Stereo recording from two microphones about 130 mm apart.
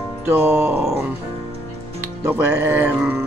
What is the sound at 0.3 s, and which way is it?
Speech, 15° right (ahead or behind).